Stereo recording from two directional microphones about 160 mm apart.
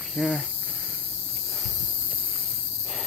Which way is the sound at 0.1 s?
Centre (ahead or behind).